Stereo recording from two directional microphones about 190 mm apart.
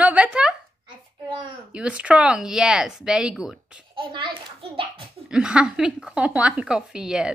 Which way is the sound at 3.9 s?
25° right (ahead or behind).